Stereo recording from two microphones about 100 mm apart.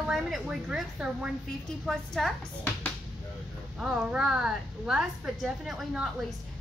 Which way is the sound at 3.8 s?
10° right (ahead or behind).